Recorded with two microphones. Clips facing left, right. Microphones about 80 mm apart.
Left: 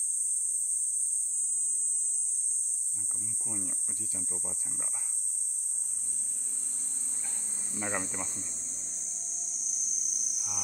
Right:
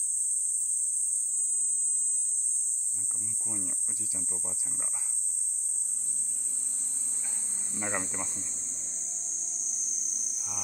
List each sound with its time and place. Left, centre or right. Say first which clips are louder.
3.3 s speech: even; centre
7.8 s speech: even; centre
8.4 s speech: even; right
8.7 s a sound: right 1 dB; right